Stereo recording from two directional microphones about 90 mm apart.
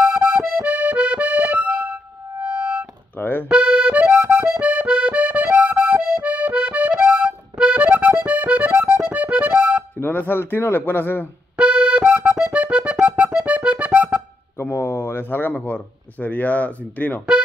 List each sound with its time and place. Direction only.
0.0 s accordion: 15° right (ahead or behind)
2.4 s music: 20° right (ahead or behind)
3.2 s music: 20° left (ahead or behind)
3.4 s accordion: 10° right (ahead or behind)
9.0 s music: 15° right (ahead or behind)
9.9 s speech: 20° left (ahead or behind)
11.5 s accordion: 10° right (ahead or behind)
12.5 s music: 10° right (ahead or behind)
14.6 s speech: 25° left (ahead or behind)